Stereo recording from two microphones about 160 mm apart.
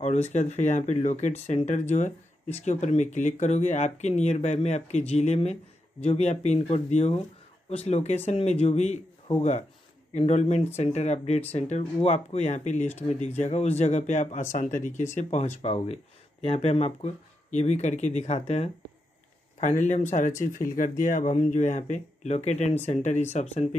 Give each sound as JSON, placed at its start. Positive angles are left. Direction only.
{"t": 0.0, "sound": "speech", "side_deg": 45}